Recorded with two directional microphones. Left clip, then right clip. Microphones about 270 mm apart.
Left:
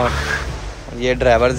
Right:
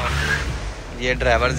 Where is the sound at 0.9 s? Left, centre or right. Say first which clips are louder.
Left 5 dB; centre.